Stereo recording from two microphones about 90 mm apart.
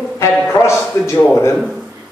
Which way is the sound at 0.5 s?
30° left (ahead or behind).